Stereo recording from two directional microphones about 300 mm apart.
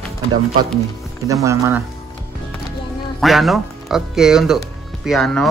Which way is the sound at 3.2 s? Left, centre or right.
Centre.